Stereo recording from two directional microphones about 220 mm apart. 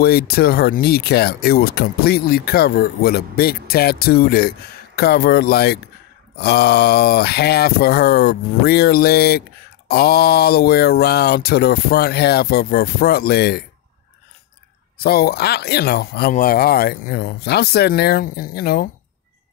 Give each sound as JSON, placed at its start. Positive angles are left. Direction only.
{"t": 0.0, "sound": "speech", "side_deg": 45}
{"t": 15.0, "sound": "speech", "side_deg": 45}